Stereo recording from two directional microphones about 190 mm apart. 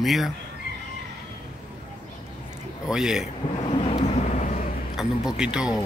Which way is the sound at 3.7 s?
30° left (ahead or behind).